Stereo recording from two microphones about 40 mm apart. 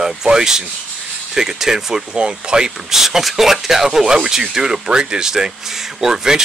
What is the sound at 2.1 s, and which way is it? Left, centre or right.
Speech, right.